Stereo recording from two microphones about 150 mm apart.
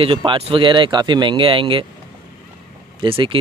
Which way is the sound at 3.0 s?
35° right (ahead or behind).